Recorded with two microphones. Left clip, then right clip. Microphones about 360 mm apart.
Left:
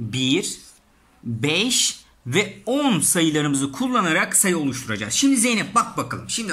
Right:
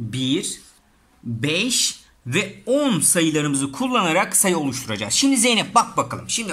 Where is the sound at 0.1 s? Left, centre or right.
Centre.